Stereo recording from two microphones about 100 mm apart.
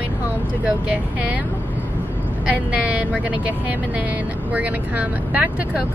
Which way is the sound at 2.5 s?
15° right (ahead or behind).